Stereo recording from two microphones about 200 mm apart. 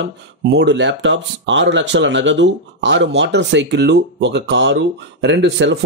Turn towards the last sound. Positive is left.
turn(degrees=-65)  # may be behind; listen again after turning